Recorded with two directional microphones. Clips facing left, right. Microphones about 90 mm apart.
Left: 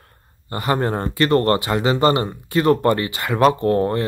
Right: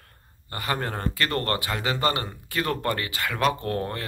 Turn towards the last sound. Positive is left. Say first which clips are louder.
# left 11 dB
turn(degrees=25)  # may be behind; listen again after turning